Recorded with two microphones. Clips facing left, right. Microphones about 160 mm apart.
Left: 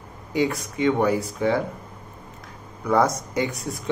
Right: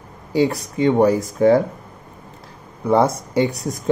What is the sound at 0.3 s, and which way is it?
Speech, 35° right (ahead or behind).